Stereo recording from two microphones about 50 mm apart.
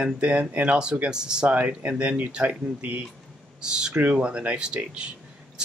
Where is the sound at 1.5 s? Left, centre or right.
Right.